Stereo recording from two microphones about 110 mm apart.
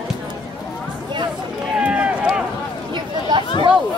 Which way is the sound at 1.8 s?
10° right (ahead or behind).